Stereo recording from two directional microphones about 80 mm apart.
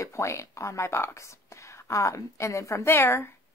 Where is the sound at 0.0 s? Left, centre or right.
Left.